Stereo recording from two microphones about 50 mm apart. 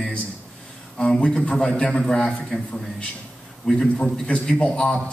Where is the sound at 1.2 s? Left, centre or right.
Left.